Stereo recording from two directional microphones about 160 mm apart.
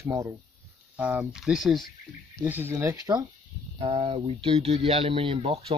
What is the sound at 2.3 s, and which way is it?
Speech, 15° right (ahead or behind).